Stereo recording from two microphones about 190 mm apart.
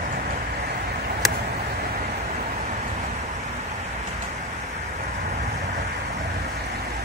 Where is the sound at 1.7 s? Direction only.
55° right (ahead or behind).